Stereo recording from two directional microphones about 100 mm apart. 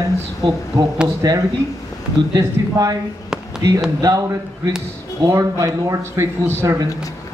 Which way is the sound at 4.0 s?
40° right (ahead or behind).